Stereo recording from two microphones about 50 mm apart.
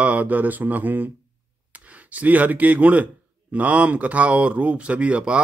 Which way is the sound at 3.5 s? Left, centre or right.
Right.